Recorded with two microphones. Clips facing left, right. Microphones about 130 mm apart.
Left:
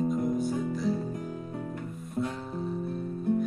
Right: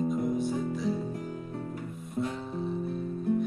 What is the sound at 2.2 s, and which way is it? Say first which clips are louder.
Music: even; centre (ahead or behind).